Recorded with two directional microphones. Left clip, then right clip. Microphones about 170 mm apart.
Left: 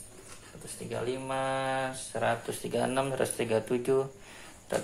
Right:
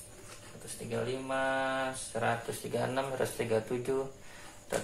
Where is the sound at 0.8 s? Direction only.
65° left (ahead or behind).